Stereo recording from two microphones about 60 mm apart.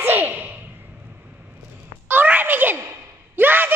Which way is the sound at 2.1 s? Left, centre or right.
Right.